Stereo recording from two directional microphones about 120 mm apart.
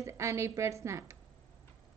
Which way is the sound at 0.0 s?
25° right (ahead or behind).